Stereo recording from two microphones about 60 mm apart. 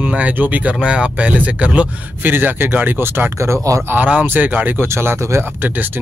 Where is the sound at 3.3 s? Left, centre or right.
Right.